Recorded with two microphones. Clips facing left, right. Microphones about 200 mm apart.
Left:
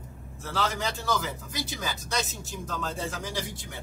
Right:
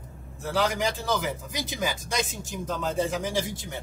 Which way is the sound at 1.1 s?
20° right (ahead or behind).